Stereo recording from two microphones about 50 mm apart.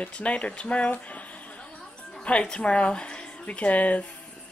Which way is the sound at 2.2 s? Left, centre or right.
Left.